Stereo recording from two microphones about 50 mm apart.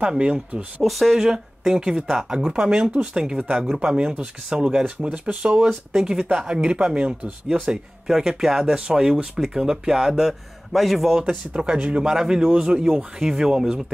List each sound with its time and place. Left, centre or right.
0.2 s speech: right
0.8 s speech: centre
11.1 s speech: centre